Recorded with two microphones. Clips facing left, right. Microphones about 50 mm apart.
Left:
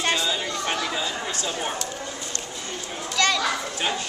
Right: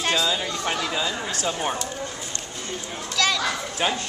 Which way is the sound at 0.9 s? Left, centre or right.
Right.